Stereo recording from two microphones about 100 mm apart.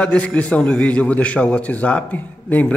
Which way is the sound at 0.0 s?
10° left (ahead or behind).